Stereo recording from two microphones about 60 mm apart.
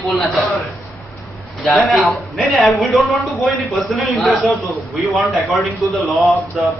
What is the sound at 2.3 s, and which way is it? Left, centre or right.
Speech, centre.